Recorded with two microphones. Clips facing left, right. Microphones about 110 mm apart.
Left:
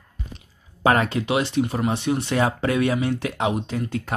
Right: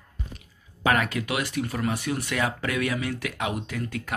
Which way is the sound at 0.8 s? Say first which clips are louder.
Left 4 dB; 30° left (ahead or behind).